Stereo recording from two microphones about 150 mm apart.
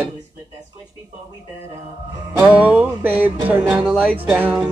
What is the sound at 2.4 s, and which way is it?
Speech, 10° right (ahead or behind).